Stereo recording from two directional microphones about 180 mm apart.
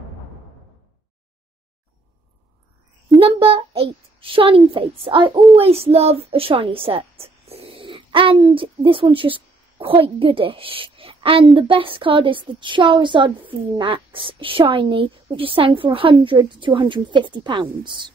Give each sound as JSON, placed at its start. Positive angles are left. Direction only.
{"t": 3.2, "sound": "a child's voice", "side_deg": -30}